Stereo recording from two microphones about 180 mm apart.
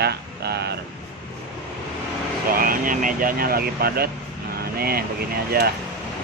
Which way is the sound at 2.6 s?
50° right (ahead or behind).